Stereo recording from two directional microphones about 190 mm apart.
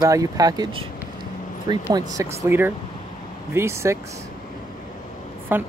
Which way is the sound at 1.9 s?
15° right (ahead or behind).